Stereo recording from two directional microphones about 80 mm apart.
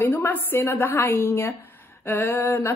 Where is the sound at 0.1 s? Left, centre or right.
Left.